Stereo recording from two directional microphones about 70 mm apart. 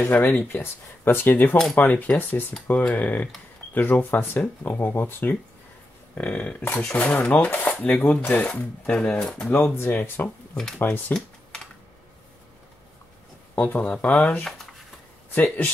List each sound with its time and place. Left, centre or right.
0.0 s speech: left
9.5 s speech: left
13.6 s speech: left